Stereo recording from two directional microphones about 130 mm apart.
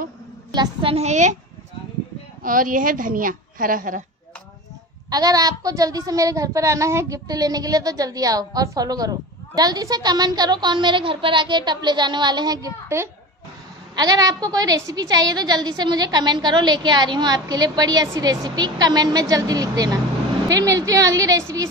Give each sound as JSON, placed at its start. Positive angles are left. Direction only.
{"t": 0.5, "sound": "a woman's voice", "side_deg": -35}
{"t": 0.9, "sound": "a woman's voice", "side_deg": -60}
{"t": 2.4, "sound": "speech", "side_deg": -90}
{"t": 5.1, "sound": "a child's voice", "side_deg": -30}